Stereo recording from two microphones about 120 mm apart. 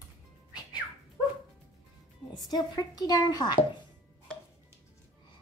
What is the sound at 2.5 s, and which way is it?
Speech, 35° left (ahead or behind).